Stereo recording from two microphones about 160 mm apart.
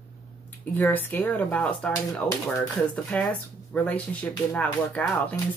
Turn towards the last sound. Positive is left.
turn(degrees=10)  # may be behind; listen again after turning